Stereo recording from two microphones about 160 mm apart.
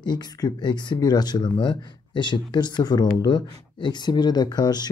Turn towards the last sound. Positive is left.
turn(degrees=25)  # may be behind; listen again after turning